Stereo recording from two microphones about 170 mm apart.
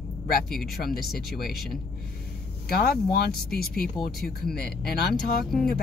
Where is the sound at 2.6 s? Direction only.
65° left (ahead or behind).